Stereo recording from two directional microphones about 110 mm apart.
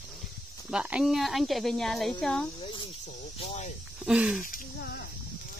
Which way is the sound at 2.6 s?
55° left (ahead or behind).